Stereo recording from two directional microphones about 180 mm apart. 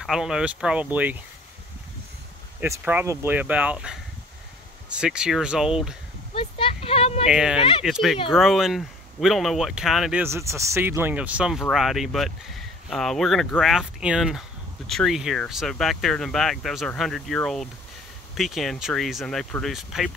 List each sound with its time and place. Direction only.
0.0 s speech: 5° right (ahead or behind)
2.6 s speech: 10° right (ahead or behind)
6.3 s a sound: 30° left (ahead or behind)
7.2 s speech: 5° right (ahead or behind)
10.2 s speech: 15° right (ahead or behind)